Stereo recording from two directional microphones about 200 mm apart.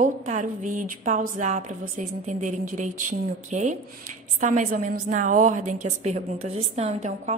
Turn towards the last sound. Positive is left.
turn(degrees=-35)  # may be behind; listen again after turning